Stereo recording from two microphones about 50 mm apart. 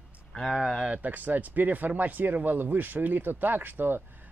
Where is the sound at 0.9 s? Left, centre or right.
Right.